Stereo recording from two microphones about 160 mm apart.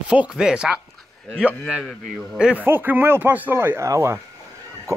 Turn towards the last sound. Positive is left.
turn(degrees=-20)  # may be behind; listen again after turning